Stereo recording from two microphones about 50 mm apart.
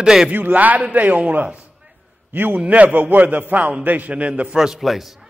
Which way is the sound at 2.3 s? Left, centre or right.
Right.